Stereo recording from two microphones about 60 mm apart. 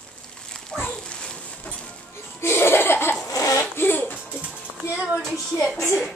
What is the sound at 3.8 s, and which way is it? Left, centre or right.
Music, left.